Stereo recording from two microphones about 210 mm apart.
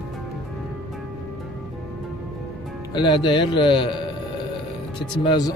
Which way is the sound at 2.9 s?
20° left (ahead or behind).